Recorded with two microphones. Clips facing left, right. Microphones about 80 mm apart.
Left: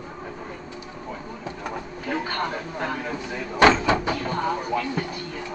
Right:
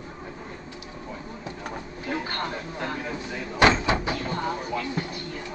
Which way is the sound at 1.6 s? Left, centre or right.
Left.